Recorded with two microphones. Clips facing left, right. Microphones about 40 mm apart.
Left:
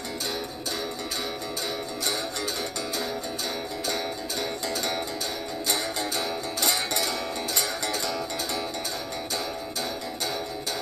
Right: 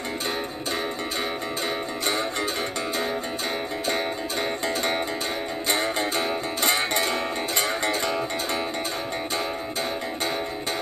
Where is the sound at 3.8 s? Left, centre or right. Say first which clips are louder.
Right 4 dB; right.